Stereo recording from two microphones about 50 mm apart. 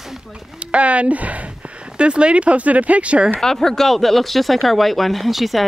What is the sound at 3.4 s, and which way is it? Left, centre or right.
Speech, centre.